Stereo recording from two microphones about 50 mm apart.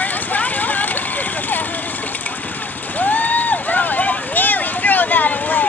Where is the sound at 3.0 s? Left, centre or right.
Left.